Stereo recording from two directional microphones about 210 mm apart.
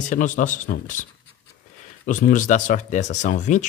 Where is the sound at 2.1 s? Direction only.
40° left (ahead or behind).